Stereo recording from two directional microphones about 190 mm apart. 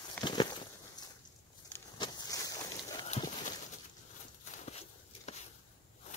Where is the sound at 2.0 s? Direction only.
20° left (ahead or behind).